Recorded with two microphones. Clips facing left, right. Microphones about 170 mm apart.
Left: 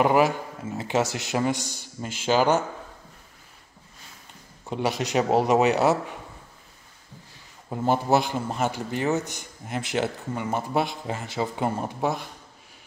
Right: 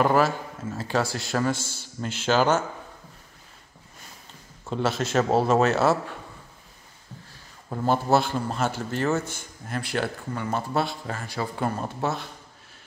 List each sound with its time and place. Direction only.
0.0 s a man's voice: 15° left (ahead or behind)
4.6 s a man's voice: 15° left (ahead or behind)
7.7 s a man's voice: 15° left (ahead or behind)